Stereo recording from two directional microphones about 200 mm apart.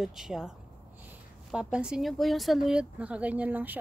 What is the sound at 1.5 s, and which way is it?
Speech, 5° right (ahead or behind).